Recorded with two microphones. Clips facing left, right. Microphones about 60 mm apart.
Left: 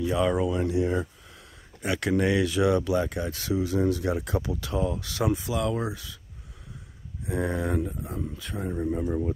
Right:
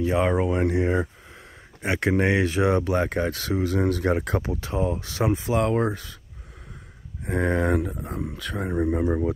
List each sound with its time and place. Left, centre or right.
0.0 s speech: right
1.8 s speech: right
4.6 s speech: right
7.2 s speech: right